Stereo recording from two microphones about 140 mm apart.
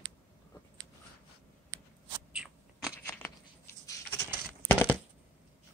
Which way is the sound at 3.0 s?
15° left (ahead or behind).